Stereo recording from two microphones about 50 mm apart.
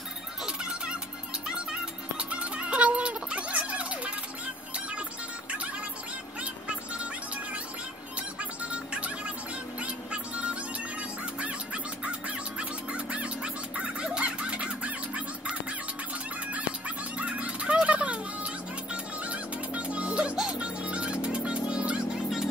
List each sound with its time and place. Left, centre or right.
1.5 s music: right
8.4 s music: right
16.5 s music: right